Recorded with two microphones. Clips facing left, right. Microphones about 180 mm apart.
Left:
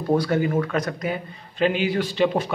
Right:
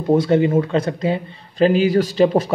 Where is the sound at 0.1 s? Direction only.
25° right (ahead or behind).